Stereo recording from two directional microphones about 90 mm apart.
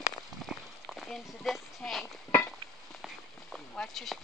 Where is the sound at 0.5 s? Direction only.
5° right (ahead or behind).